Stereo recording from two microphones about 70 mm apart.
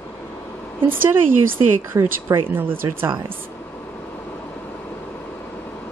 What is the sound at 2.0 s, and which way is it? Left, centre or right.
Speech, right.